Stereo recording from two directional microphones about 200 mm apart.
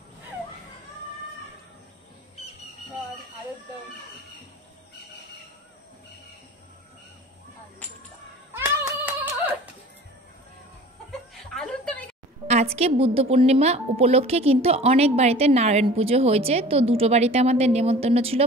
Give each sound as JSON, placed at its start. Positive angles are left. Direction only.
{"t": 8.5, "sound": "a sound", "side_deg": -10}
{"t": 11.1, "sound": "chuckle", "side_deg": 0}
{"t": 12.4, "sound": "a woman's voice", "side_deg": -35}